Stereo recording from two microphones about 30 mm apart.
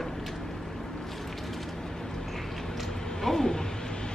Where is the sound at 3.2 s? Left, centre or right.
Centre.